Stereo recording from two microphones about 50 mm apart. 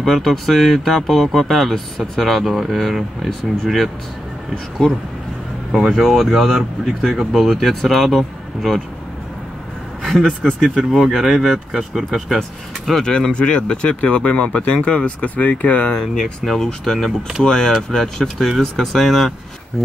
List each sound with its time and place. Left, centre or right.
0.0 s speech: centre
5.7 s speech: centre
10.2 s speech: centre
10.8 s speech: centre
12.4 s speech: centre
13.3 s speech: centre
16.0 s speech: centre